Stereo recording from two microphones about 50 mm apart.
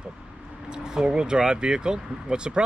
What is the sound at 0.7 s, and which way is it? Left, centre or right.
Speech, centre.